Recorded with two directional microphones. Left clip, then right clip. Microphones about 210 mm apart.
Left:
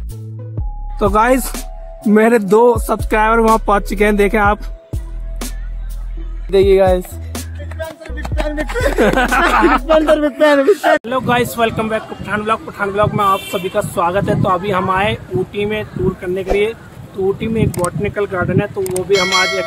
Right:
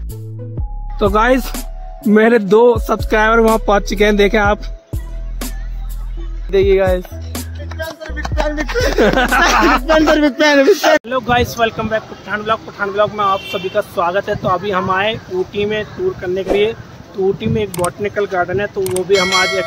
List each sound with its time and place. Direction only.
0.9 s speech: 5° left (ahead or behind)
6.5 s speech: 35° left (ahead or behind)
7.7 s music: centre (ahead or behind)
9.5 s speech: 5° right (ahead or behind)
10.1 s a man's voice: 40° right (ahead or behind)
11.1 s speech: 5° left (ahead or behind)